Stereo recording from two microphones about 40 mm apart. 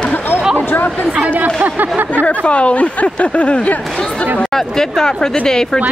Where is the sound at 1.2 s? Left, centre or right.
Right.